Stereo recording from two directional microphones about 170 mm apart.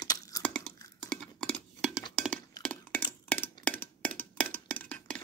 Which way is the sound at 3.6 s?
10° left (ahead or behind).